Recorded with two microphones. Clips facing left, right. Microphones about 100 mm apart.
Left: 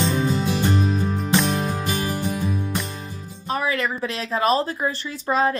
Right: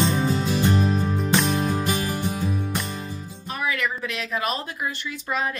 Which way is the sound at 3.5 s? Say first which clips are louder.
Left 3 dB; 35° left (ahead or behind).